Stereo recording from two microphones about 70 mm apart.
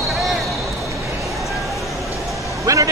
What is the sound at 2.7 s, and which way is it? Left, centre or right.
Vehicle, right.